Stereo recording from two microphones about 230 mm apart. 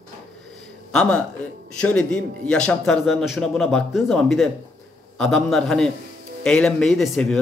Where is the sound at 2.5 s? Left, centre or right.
Centre.